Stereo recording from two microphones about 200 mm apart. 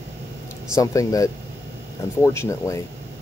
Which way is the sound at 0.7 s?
15° left (ahead or behind).